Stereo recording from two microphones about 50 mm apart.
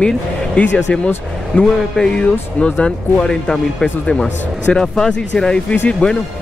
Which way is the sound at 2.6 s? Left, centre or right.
Centre.